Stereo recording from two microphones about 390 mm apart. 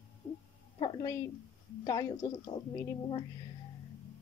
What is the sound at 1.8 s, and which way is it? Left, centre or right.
Speech, centre.